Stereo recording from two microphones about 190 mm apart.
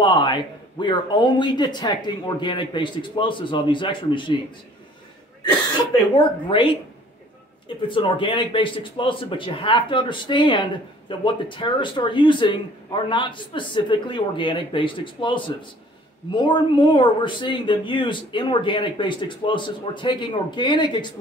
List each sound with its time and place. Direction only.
0.0 s a man's voice: 25° left (ahead or behind)
6.4 s a man's voice: 30° left (ahead or behind)